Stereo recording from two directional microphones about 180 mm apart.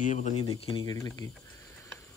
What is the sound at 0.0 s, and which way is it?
Speech, 40° left (ahead or behind).